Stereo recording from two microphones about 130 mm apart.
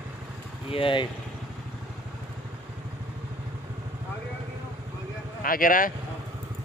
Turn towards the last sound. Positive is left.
turn(degrees=90)